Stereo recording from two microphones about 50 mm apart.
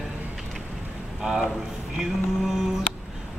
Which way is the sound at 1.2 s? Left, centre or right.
Centre.